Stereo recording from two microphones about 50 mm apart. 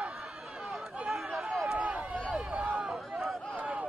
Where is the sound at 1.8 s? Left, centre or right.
Right.